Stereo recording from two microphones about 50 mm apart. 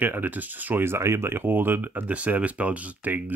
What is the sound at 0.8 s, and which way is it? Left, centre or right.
Speech, right.